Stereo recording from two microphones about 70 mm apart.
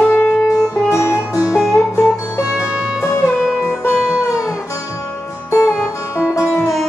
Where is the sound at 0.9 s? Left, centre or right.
Left.